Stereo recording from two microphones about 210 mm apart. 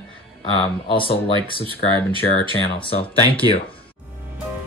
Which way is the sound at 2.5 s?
25° left (ahead or behind).